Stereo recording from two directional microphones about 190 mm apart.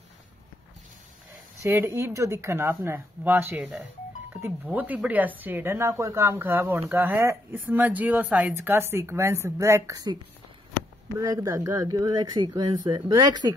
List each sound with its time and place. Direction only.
1.6 s speech: 15° right (ahead or behind)
11.1 s speech: 15° right (ahead or behind)